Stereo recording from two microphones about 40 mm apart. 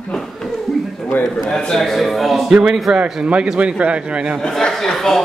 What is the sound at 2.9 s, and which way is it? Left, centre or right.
Speech, centre.